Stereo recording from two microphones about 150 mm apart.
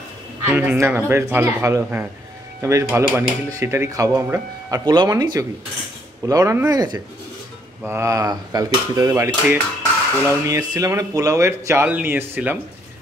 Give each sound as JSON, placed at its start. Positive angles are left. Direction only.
{"t": 0.5, "sound": "speech", "side_deg": -15}